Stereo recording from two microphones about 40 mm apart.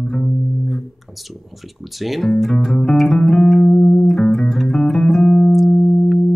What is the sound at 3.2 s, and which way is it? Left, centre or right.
Music, centre.